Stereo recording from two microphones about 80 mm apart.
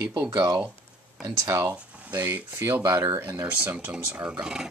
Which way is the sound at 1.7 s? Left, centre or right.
Centre.